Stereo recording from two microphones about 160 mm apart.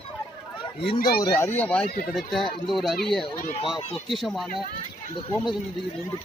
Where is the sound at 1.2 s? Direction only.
20° left (ahead or behind); by 2.9 s centre (ahead or behind).